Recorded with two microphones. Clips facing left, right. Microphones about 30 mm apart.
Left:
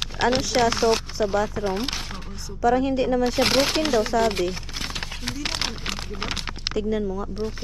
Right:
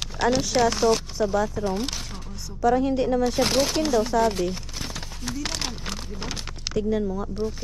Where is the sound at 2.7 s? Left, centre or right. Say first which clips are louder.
Left 1 dB; left.